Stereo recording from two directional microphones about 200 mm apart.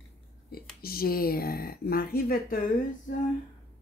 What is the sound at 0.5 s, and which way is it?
Speech, 50° left (ahead or behind).